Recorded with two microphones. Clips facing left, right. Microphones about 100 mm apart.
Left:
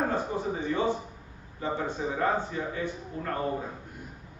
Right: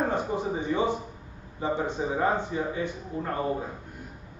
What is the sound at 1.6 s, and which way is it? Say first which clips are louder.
Speech: right 3 dB; 20° right (ahead or behind).